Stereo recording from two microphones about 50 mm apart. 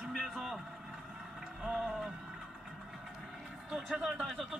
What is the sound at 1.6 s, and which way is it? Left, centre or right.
Speech, centre.